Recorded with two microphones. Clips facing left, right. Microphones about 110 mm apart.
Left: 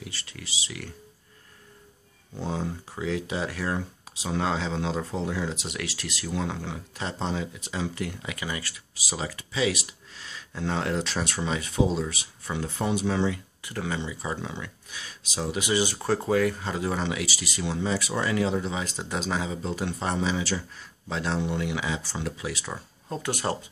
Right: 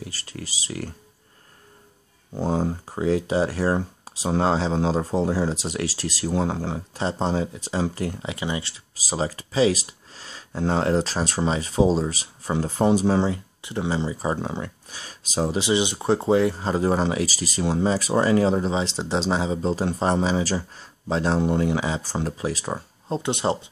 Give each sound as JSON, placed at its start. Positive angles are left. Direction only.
{"t": 0.0, "sound": "speech", "side_deg": -40}
{"t": 2.3, "sound": "speech", "side_deg": -40}
{"t": 8.9, "sound": "speech", "side_deg": -35}
{"t": 13.6, "sound": "speech", "side_deg": -25}
{"t": 23.0, "sound": "speech", "side_deg": -25}